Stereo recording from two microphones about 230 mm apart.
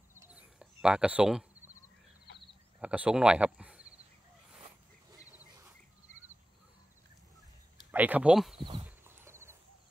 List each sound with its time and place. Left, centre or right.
0.2 s bird: centre
2.8 s speech: centre
5.3 s a sound: centre
7.9 s speech: centre
8.5 s a sound: right
8.8 s horse: centre